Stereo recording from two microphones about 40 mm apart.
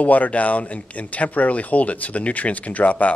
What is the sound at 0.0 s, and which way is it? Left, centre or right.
Speech, left.